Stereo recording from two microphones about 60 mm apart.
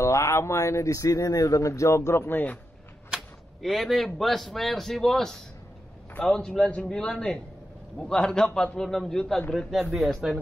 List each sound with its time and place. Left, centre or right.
0.0 s a man's voice: left
3.6 s a man's voice: centre